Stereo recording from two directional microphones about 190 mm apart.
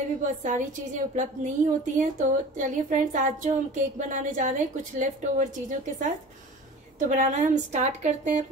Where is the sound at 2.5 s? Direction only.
40° right (ahead or behind).